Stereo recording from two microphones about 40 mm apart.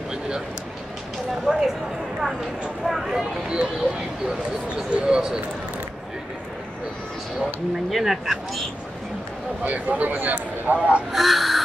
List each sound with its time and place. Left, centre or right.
1.5 s speech: centre
2.8 s speech: centre
3.1 s speech: centre
4.9 s speech: right
7.9 s speech: centre
9.6 s speech: right
11.1 s music: centre